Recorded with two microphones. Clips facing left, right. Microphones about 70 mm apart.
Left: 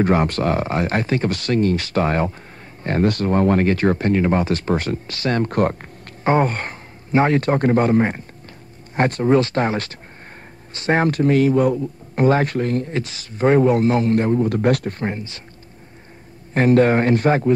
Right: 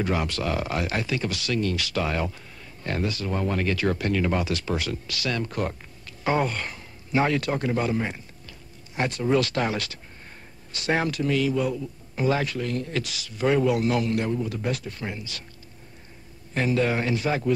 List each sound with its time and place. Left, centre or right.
0.0 s a man's voice: left
3.1 s a man's voice: left
6.2 s a man's voice: left
16.5 s speech: left